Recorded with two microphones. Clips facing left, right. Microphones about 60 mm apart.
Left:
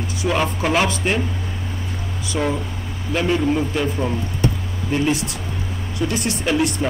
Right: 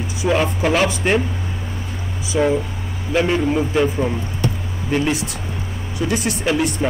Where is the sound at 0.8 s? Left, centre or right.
Centre.